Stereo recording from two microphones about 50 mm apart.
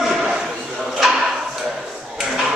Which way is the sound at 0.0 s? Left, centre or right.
Centre.